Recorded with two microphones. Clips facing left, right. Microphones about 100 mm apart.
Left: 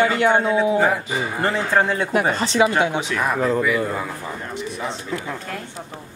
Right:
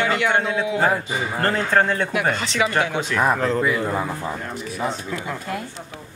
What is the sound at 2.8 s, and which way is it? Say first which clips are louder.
Speech: left 2 dB; 20° left (ahead or behind).